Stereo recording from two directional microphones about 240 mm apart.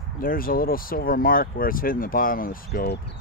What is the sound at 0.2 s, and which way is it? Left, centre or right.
Speech, left.